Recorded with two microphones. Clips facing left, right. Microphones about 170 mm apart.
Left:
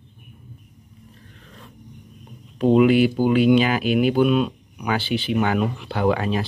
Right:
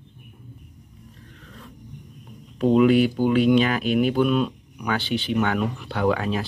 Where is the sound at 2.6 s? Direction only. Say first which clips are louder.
Left 1 dB; 5° left (ahead or behind).